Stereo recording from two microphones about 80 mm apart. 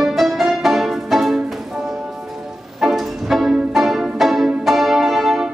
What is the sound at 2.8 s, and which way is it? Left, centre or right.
Music, centre.